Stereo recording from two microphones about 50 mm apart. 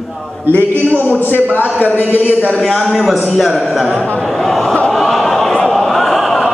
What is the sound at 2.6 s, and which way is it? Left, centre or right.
A man's voice, centre.